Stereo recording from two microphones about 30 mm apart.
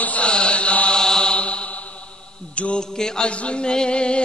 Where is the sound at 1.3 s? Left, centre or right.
Left.